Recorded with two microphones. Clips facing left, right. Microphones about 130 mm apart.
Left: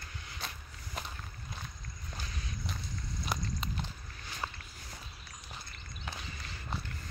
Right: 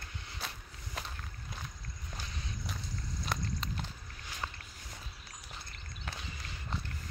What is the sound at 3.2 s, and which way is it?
Clip-clop, 10° left (ahead or behind).